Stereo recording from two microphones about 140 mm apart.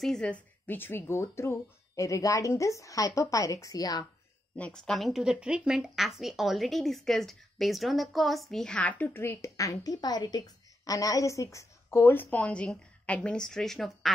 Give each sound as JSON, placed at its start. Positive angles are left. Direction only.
{"t": 0.0, "sound": "speech", "side_deg": 5}
{"t": 4.6, "sound": "speech", "side_deg": 5}